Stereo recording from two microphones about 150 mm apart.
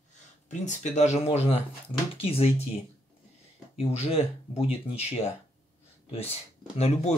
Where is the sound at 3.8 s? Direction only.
45° left (ahead or behind).